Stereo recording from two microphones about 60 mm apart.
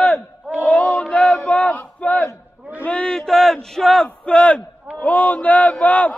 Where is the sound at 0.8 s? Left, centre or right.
Centre.